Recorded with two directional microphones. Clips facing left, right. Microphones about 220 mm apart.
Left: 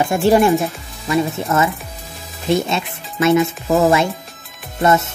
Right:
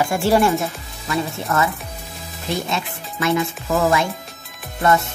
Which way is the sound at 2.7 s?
25° left (ahead or behind).